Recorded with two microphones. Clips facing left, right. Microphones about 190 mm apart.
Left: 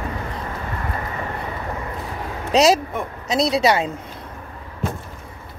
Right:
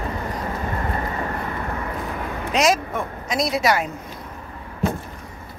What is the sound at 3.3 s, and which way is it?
Speech, 30° left (ahead or behind).